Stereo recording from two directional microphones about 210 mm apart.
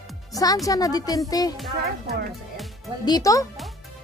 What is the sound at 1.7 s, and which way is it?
Speech, 50° right (ahead or behind).